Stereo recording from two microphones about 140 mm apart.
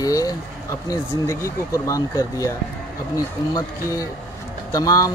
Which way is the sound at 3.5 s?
25° left (ahead or behind).